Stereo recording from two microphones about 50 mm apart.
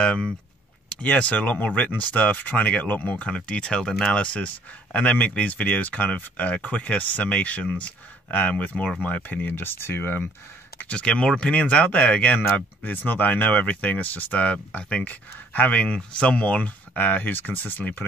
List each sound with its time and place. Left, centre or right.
0.0 s speech: centre; by 10.3 s left
11.0 s speech: left